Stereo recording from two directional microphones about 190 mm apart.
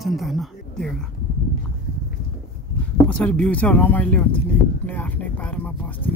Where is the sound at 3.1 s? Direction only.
5° left (ahead or behind).